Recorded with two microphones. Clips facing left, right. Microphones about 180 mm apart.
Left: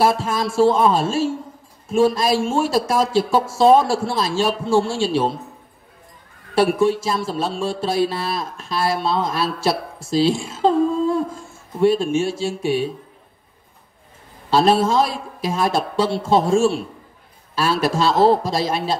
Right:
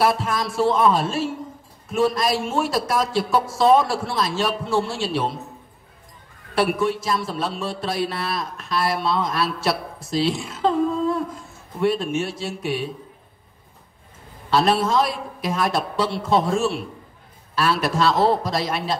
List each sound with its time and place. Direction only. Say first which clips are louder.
0.0 s a man's voice: left 2 dB; 25° left (ahead or behind)
6.5 s a man's voice: left 4 dB; 30° left (ahead or behind)
14.5 s a man's voice: left 3 dB; 30° left (ahead or behind)